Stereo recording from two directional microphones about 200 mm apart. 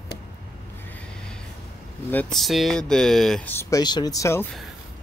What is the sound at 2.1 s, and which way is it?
Speech, 5° left (ahead or behind).